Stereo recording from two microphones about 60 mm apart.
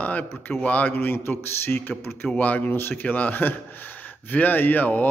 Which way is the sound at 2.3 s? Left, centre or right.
Left.